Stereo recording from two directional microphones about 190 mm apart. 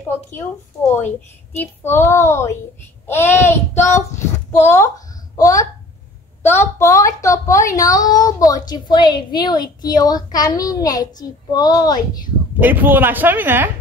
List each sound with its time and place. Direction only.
1.6 s a woman's voice: 10° left (ahead or behind)
12.5 s speech: 10° right (ahead or behind)